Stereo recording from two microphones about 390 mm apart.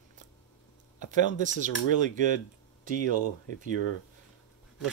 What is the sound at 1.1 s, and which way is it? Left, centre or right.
Speech, centre.